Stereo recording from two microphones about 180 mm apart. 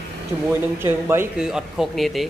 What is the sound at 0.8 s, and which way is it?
Speech, 10° right (ahead or behind).